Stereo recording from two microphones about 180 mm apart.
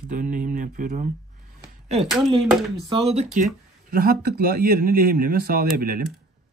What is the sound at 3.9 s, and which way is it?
Speech, 55° right (ahead or behind).